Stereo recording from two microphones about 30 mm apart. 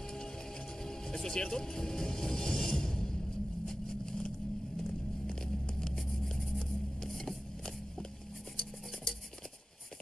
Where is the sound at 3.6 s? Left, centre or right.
Left.